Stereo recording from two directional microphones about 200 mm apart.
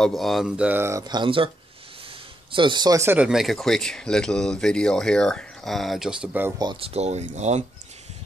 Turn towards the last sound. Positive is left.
turn(degrees=-35)  # may be behind; listen again after turning